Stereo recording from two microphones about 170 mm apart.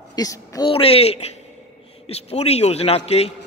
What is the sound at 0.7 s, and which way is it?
A man's voice, 35° left (ahead or behind).